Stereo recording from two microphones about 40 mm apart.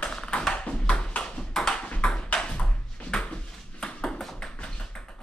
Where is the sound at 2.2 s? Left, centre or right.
Left.